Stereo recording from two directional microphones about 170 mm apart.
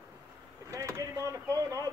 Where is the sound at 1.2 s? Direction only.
20° right (ahead or behind).